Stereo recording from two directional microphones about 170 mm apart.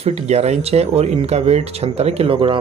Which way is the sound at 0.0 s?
40° right (ahead or behind).